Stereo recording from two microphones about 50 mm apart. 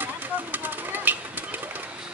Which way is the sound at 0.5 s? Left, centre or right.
Right.